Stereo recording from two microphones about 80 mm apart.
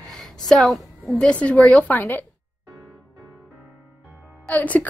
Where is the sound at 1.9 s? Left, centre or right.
Left.